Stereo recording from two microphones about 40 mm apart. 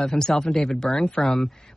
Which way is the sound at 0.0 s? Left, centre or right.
Centre.